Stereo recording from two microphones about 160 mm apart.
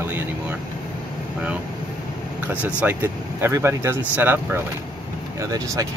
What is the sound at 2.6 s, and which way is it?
Speech, 10° right (ahead or behind).